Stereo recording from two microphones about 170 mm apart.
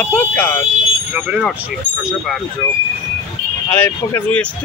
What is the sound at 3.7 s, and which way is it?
Speech, 15° left (ahead or behind).